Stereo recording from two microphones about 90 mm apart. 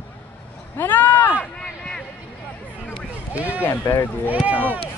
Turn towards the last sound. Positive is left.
turn(degrees=-20)  # may be behind; listen again after turning